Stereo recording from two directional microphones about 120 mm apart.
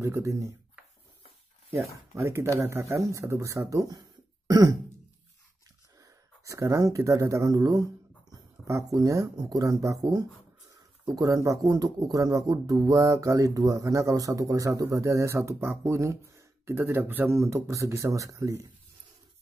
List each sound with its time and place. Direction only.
0.0 s speech: 25° right (ahead or behind)
1.7 s speech: 25° right (ahead or behind)
5.9 s speech: 30° right (ahead or behind)